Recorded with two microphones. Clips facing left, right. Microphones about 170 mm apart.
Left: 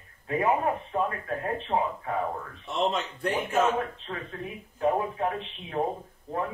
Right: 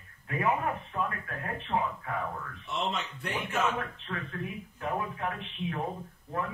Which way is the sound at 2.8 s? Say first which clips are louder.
Left 7 dB; 40° left (ahead or behind).